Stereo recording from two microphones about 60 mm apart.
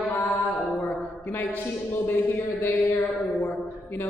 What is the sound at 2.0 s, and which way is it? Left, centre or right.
Speech, left.